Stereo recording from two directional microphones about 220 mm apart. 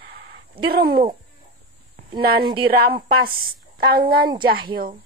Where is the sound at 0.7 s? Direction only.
45° right (ahead or behind).